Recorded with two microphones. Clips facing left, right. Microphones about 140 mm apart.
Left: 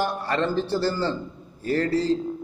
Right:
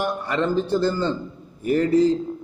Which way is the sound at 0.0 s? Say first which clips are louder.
Right 1 dB; 15° right (ahead or behind).